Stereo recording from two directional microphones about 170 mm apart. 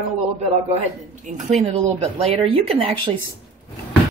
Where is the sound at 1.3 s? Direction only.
50° right (ahead or behind); by 3.1 s 30° right (ahead or behind).